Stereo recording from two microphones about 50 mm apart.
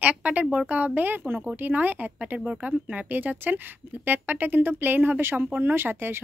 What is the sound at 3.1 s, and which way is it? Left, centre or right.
A woman's voice, right.